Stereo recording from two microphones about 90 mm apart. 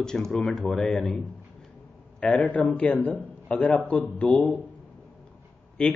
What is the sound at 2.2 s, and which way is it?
Speech, 15° left (ahead or behind).